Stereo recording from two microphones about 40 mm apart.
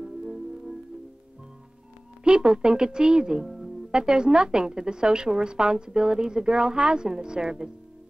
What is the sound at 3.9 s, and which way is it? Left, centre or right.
A woman's voice, right.